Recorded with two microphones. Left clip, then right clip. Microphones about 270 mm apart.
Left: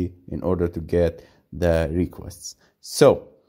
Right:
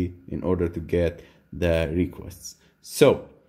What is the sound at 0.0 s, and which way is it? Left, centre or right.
Speech, left.